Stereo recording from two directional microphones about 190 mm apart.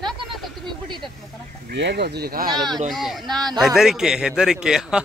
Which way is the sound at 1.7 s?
65° right (ahead or behind).